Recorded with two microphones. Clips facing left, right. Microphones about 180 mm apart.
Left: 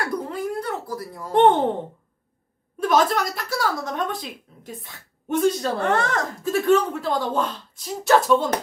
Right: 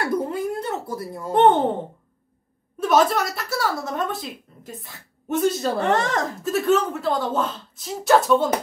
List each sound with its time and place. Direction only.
0.1 s a sound: 25° right (ahead or behind)
1.3 s speech: centre (ahead or behind)
2.8 s speech: 5° right (ahead or behind)
5.9 s speech: 20° right (ahead or behind)
6.4 s speech: centre (ahead or behind)